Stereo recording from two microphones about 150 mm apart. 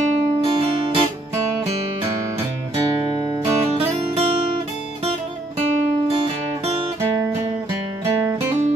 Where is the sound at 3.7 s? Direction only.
45° right (ahead or behind).